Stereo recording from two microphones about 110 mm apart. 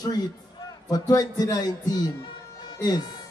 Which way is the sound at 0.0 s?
40° left (ahead or behind).